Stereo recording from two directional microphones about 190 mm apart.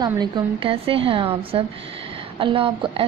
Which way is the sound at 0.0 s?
25° right (ahead or behind).